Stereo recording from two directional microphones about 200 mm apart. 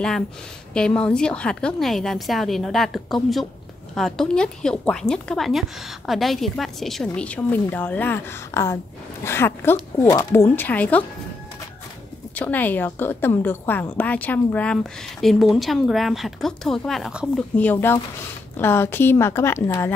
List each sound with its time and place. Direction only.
0.7 s a woman's voice: 5° left (ahead or behind)
12.4 s a woman's voice: 10° left (ahead or behind)
17.6 s speech: 10° left (ahead or behind)